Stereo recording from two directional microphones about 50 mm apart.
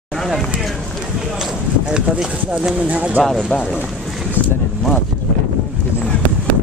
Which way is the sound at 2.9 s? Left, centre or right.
Right.